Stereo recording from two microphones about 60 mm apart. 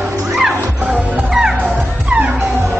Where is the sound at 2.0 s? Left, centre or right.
Centre.